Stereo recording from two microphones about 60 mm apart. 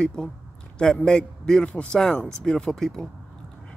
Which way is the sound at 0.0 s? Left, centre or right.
Centre.